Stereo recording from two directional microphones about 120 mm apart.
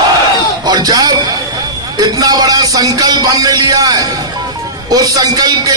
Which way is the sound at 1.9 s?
35° right (ahead or behind).